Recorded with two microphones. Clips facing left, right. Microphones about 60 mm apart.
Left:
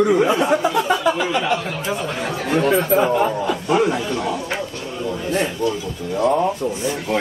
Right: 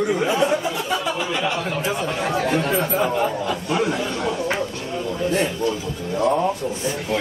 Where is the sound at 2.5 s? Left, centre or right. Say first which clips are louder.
Left 9 dB; left.